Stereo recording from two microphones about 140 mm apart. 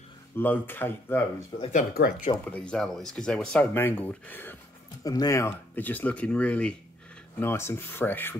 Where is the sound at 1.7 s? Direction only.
80° left.